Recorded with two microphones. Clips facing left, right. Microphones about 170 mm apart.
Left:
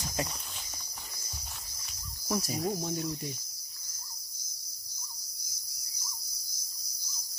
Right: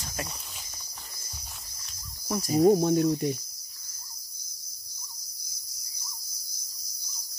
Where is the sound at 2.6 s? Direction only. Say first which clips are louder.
Right 12 dB; 65° right (ahead or behind).